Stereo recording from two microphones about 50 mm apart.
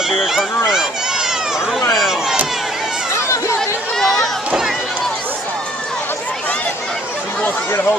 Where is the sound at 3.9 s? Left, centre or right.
Centre.